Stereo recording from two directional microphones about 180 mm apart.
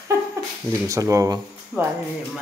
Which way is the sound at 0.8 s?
15° right (ahead or behind).